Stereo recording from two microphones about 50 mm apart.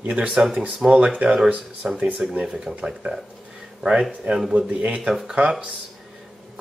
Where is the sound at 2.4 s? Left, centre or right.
Centre.